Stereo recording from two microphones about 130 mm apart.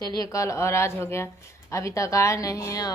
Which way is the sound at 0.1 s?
25° left (ahead or behind).